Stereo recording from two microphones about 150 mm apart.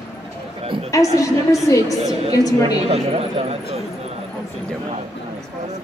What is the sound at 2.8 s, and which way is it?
Speech, 45° right (ahead or behind).